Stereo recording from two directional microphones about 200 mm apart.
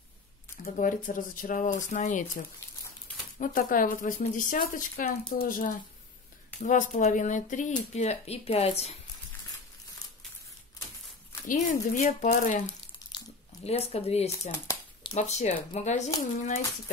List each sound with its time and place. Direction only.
0.7 s a woman's voice: 40° left (ahead or behind)
11.4 s speech: 40° left (ahead or behind)
13.0 s a sound: 20° left (ahead or behind)
13.7 s speech: 30° left (ahead or behind)